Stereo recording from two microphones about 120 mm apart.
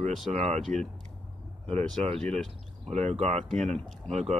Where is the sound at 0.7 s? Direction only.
90° right.